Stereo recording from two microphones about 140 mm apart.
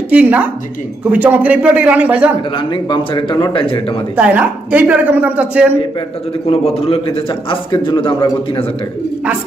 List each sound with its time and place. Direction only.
0.1 s speech: 10° right (ahead or behind)
2.5 s a man's voice: 35° left (ahead or behind)
4.2 s speech: 10° right (ahead or behind)
6.4 s a man's voice: 45° left (ahead or behind)